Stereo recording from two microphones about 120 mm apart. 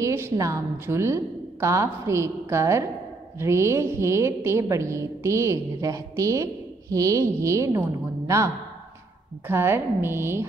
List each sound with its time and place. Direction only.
0.0 s a woman's voice: 25° right (ahead or behind)
9.5 s a woman's voice: 20° right (ahead or behind)